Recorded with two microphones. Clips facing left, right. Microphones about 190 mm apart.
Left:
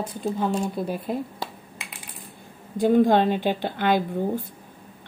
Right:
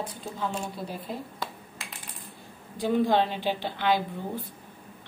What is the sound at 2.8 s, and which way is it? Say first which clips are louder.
A woman's voice: left 6 dB; 50° left (ahead or behind).